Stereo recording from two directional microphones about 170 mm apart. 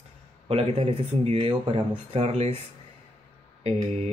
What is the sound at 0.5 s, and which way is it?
Speech, 35° right (ahead or behind).